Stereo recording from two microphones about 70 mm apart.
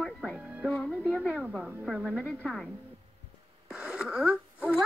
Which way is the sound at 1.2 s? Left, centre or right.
Centre.